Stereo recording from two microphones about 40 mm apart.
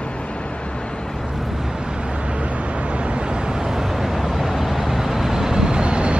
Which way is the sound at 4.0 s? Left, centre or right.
Centre.